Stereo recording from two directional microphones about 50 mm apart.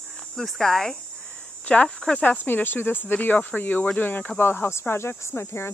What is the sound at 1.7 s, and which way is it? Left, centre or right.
Speech, left.